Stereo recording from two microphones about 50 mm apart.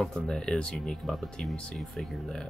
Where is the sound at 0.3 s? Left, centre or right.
Centre.